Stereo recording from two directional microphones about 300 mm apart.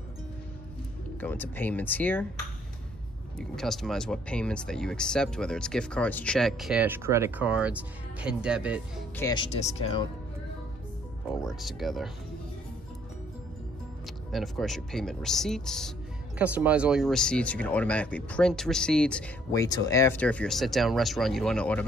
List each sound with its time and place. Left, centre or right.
1.2 s speech: centre
3.3 s speech: centre
9.1 s speech: centre
11.4 s speech: centre
14.3 s speech: centre